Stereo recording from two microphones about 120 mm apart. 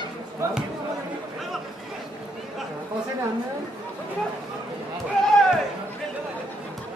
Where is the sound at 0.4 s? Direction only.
25° right (ahead or behind).